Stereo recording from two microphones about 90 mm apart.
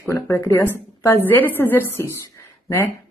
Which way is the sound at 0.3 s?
25° left (ahead or behind).